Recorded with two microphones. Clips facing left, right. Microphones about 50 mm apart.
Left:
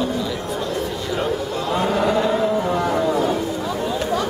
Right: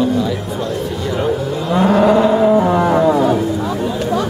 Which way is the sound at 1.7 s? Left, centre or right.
Centre.